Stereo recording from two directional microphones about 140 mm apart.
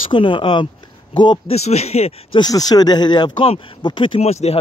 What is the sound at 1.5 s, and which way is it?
Speech, 50° left (ahead or behind).